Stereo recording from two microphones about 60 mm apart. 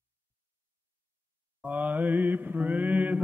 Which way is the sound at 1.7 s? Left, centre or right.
Right.